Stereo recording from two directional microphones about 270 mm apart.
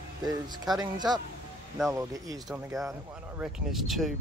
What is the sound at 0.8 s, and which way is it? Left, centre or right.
Speech, centre.